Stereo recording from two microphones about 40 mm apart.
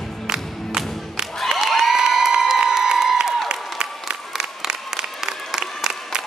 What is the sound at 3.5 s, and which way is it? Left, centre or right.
Applause, centre.